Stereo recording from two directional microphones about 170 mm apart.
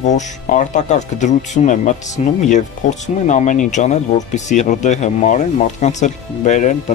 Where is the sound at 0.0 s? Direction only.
45° left (ahead or behind).